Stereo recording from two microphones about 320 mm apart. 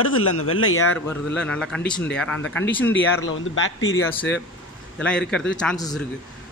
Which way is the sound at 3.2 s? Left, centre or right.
Left.